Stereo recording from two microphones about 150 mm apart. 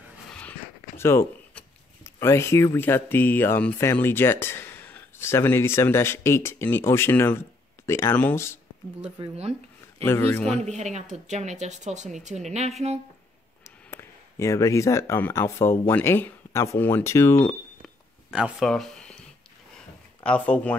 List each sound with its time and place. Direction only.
0.3 s a sound: 10° left (ahead or behind)
2.1 s speech: 15° left (ahead or behind)
9.4 s a sound: 45° right (ahead or behind)
10.0 s speech: 15° left (ahead or behind)
10.6 s speech: 50° right (ahead or behind)
13.7 s speech: 20° left (ahead or behind)
17.4 s cash register: 10° left (ahead or behind)
18.3 s speech: 5° right (ahead or behind)
20.2 s speech: 10° left (ahead or behind)